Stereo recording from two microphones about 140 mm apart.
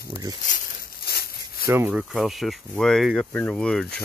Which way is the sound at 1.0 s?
90° left.